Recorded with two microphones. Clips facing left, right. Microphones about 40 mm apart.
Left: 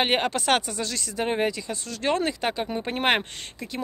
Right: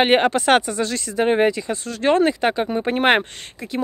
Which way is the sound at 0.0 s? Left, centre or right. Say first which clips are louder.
Right 7 dB; right.